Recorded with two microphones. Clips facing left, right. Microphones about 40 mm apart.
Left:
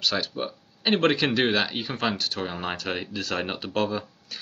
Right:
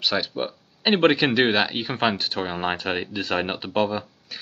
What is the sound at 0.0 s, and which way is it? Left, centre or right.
Speech, centre.